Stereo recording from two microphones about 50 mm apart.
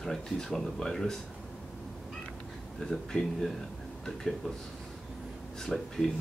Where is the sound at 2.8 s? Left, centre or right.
Centre.